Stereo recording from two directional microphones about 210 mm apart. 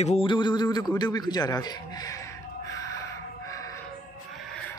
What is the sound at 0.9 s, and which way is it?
Music, 20° left (ahead or behind).